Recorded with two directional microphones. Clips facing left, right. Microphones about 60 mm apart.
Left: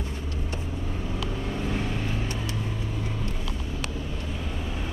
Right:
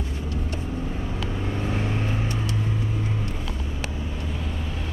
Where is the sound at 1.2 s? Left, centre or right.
Right.